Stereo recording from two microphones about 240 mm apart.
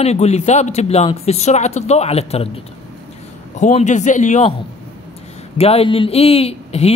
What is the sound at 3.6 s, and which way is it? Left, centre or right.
Speech, left.